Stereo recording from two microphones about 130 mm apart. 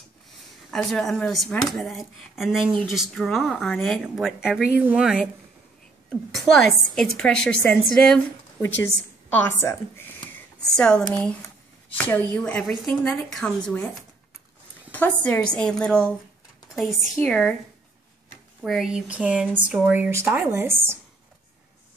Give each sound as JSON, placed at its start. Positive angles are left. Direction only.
{"t": 0.7, "sound": "a woman's voice", "side_deg": 0}
{"t": 10.7, "sound": "speech", "side_deg": 5}
{"t": 12.4, "sound": "speech", "side_deg": 10}
{"t": 14.9, "sound": "a woman's voice", "side_deg": 15}
{"t": 18.6, "sound": "speech", "side_deg": -5}